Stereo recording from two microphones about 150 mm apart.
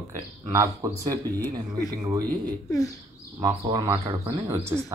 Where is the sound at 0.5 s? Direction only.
20° right (ahead or behind).